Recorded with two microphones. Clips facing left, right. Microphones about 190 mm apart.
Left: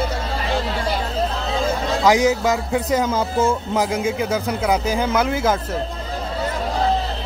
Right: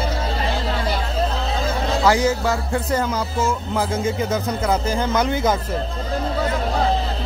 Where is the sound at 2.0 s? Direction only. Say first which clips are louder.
Left 2 dB; 20° left (ahead or behind).